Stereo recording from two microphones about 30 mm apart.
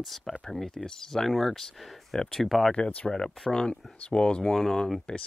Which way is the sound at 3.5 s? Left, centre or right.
Left.